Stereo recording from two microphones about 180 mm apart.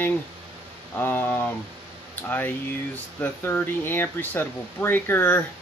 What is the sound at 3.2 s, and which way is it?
Speech, 10° left (ahead or behind).